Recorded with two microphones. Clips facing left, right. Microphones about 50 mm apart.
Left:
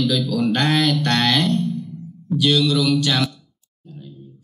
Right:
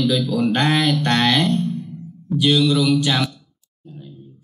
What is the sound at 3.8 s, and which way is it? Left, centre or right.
Clicking, centre.